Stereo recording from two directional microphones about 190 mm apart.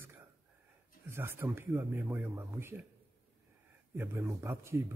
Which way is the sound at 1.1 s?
10° right (ahead or behind).